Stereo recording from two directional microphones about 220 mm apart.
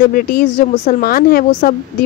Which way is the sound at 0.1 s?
40° left (ahead or behind).